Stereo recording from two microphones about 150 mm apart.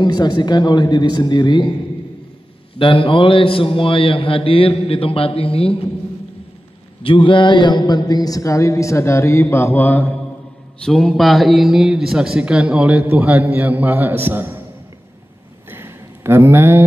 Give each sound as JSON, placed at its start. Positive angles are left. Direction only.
{"t": 0.0, "sound": "a man's voice", "side_deg": 30}
{"t": 2.8, "sound": "a man's voice", "side_deg": 35}
{"t": 7.0, "sound": "a man's voice", "side_deg": 35}
{"t": 10.8, "sound": "speech", "side_deg": 0}
{"t": 15.7, "sound": "a sound", "side_deg": -15}